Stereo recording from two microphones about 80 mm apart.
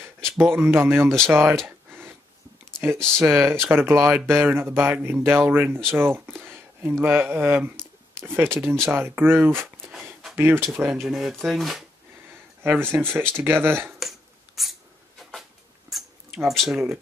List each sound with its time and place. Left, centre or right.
0.4 s speech: right
1.0 s speech: centre
1.3 s speech: right
1.9 s a sound: right
3.2 s speech: right
10.9 s speech: centre
12.6 s speech: right
13.9 s a sound: centre
15.9 s a sound: centre